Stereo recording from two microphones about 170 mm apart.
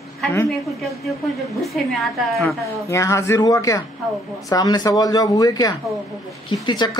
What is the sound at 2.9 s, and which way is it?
Speech, 15° left (ahead or behind).